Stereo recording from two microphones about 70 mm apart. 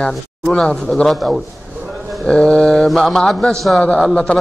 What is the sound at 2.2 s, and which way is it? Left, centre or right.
A man's voice, centre.